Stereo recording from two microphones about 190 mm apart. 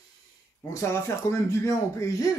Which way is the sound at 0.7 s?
15° left (ahead or behind).